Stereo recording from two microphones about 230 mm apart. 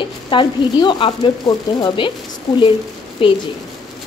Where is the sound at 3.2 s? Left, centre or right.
Left.